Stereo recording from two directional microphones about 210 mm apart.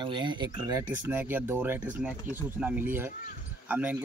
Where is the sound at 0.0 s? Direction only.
20° right (ahead or behind).